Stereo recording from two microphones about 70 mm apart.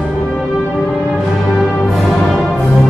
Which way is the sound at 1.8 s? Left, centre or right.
Centre.